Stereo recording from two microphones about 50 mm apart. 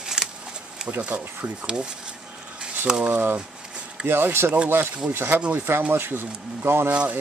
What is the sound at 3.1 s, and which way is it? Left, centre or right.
Speech, right.